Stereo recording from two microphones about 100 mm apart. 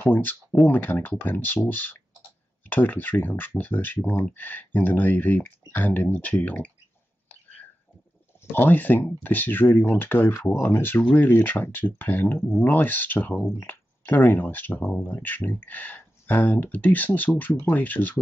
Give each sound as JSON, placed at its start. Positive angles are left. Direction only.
{"t": 0.0, "sound": "speech", "side_deg": 20}
{"t": 8.5, "sound": "speech", "side_deg": 20}